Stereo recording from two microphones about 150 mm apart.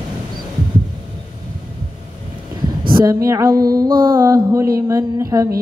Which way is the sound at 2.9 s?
30° right (ahead or behind).